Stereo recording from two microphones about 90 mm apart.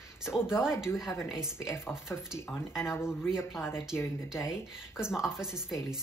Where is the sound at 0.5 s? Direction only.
30° left (ahead or behind).